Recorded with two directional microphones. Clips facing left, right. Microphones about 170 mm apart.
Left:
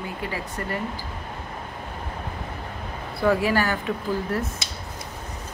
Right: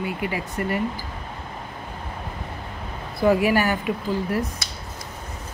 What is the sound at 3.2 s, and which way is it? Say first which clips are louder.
Speech: right 3 dB; 15° right (ahead or behind).